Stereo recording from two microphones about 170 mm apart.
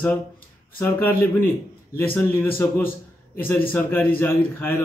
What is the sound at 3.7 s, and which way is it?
A man's voice, 10° left (ahead or behind).